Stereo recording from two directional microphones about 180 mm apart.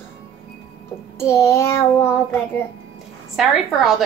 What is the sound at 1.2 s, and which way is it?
Speech, 15° left (ahead or behind).